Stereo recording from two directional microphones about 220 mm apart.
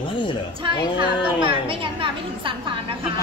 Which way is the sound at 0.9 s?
25° right (ahead or behind).